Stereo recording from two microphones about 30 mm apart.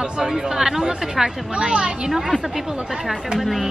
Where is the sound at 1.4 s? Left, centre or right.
Right.